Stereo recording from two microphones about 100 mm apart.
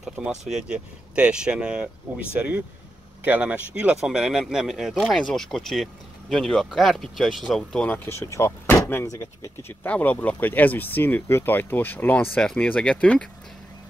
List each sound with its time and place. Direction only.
0.2 s speech: 5° right (ahead or behind); by 9.0 s 20° left (ahead or behind)
9.0 s speech: 35° left (ahead or behind)
9.8 s speech: 15° left (ahead or behind)